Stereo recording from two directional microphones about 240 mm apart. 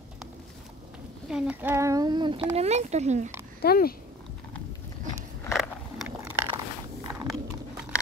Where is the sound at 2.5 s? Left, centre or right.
Right.